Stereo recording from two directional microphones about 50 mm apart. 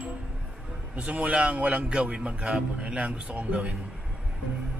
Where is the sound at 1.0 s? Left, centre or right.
Right.